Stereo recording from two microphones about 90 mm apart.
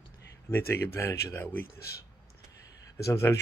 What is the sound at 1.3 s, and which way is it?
Speech, 20° left (ahead or behind).